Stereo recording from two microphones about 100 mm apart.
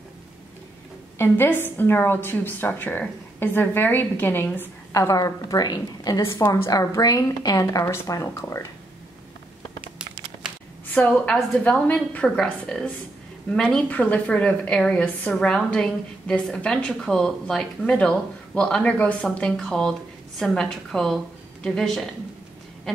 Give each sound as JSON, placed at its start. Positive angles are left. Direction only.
{"t": 1.1, "sound": "a woman's voice", "side_deg": 20}
{"t": 4.9, "sound": "a woman's voice", "side_deg": 35}
{"t": 10.9, "sound": "a woman's voice", "side_deg": 15}